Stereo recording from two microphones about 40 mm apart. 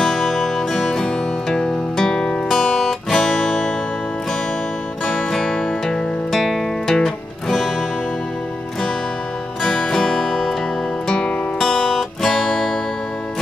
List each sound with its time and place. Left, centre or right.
0.0 s music: centre
3.1 s guitar: centre
5.0 s music: centre
9.6 s music: left
11.1 s music: left
11.6 s music: centre